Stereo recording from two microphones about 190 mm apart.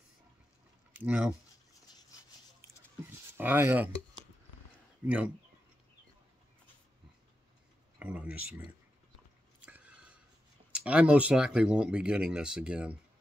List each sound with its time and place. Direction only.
0.9 s speech: 10° right (ahead or behind)
2.0 s a sound: 20° left (ahead or behind)
3.3 s speech: 10° right (ahead or behind)
5.0 s speech: 5° right (ahead or behind)
8.0 s speech: 5° right (ahead or behind)
9.7 s a sound: 10° right (ahead or behind)
10.7 s speech: 5° right (ahead or behind)